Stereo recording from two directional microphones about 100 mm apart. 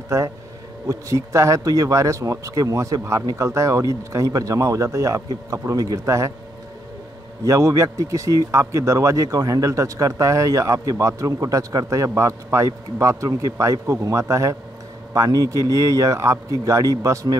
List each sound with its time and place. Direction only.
0.1 s speech: 30° right (ahead or behind)
7.4 s speech: 30° right (ahead or behind)